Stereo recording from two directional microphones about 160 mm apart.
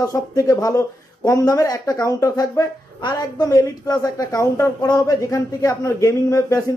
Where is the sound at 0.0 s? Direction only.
20° left (ahead or behind).